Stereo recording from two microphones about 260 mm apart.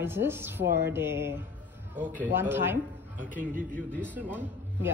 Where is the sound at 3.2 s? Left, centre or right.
Right.